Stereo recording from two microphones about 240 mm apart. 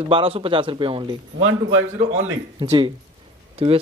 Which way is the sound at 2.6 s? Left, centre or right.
Centre.